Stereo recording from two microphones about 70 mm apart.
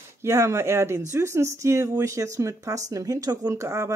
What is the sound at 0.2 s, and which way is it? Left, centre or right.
Speech, right.